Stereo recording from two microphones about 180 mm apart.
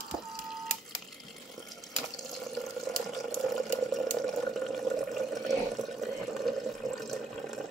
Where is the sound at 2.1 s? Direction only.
Centre (ahead or behind).